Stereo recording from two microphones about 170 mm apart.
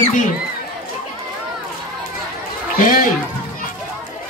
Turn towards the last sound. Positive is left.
turn(degrees=55)  # may be behind; listen again after turning